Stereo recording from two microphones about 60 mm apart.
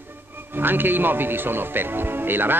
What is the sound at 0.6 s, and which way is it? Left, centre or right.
Speech, right.